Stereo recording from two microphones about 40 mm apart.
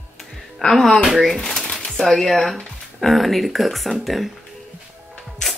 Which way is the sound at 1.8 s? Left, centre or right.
Centre.